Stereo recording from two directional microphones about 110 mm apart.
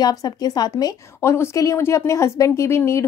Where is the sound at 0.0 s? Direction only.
35° left (ahead or behind).